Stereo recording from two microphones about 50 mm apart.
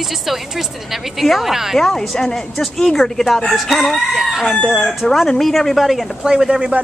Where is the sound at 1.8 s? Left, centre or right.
Centre.